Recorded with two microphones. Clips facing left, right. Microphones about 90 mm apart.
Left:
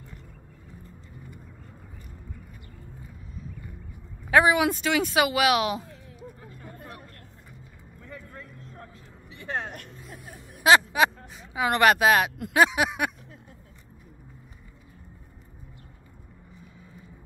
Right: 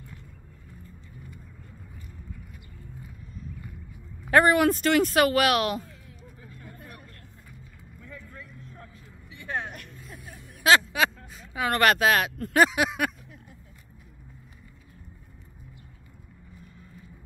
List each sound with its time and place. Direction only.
4.3 s speech: centre (ahead or behind)
8.0 s vehicle: 35° left (ahead or behind)
9.8 s vehicle: centre (ahead or behind)
11.0 s speech: 20° left (ahead or behind)
12.6 s a sound: 5° left (ahead or behind)